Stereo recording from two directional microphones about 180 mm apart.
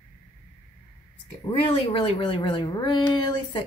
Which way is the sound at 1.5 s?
30° left (ahead or behind).